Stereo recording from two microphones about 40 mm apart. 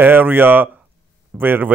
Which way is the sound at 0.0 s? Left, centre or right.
Right.